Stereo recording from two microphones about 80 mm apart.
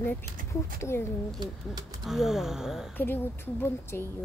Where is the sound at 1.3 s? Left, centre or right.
Right.